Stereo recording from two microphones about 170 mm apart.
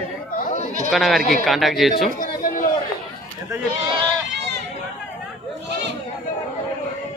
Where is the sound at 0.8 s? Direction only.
Centre (ahead or behind).